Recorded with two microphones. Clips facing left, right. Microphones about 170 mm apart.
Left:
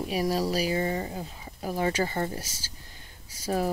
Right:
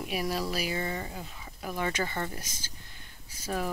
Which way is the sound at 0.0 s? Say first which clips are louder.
Left 5 dB; 35° left (ahead or behind).